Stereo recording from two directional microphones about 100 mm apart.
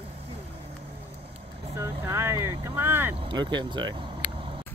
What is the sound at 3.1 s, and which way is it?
Vehicle, 55° right (ahead or behind).